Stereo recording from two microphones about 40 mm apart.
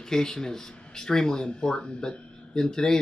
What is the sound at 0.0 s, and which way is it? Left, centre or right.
Speech, centre.